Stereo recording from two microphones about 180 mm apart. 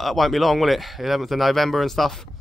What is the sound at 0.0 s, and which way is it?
Speech, centre (ahead or behind).